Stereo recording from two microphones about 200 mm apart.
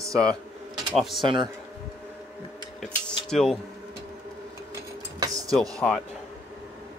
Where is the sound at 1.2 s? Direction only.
25° right (ahead or behind).